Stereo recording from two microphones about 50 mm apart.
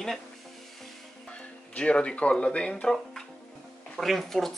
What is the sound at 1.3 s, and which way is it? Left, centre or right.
Speech, left.